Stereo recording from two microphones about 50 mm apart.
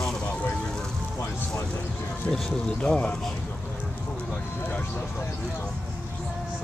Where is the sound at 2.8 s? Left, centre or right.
Centre.